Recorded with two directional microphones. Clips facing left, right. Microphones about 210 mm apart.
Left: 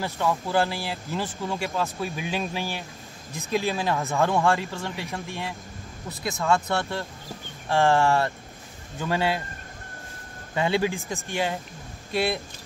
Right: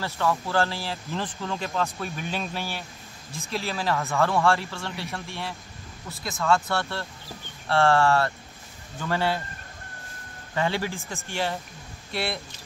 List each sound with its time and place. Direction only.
0.0 s speech: 15° left (ahead or behind)
10.5 s speech: 15° left (ahead or behind)